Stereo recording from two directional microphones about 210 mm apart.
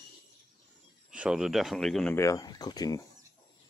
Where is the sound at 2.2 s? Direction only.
15° left (ahead or behind).